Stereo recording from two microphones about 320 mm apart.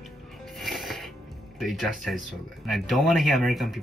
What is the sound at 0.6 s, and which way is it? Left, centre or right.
Music, centre.